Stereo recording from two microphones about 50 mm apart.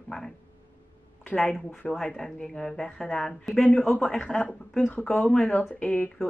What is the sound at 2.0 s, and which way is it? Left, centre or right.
A woman's voice, centre.